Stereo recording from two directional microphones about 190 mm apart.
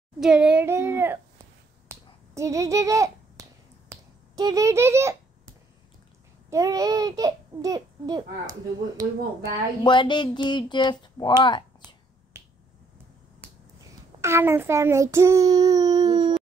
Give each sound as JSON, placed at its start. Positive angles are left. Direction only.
{"t": 0.2, "sound": "a sound", "side_deg": -5}
{"t": 3.9, "sound": "finger snapping", "side_deg": -20}
{"t": 6.5, "sound": "a child's voice", "side_deg": -20}
{"t": 9.8, "sound": "speech", "side_deg": 25}
{"t": 12.3, "sound": "finger snapping", "side_deg": -10}
{"t": 14.2, "sound": "child singing", "side_deg": -15}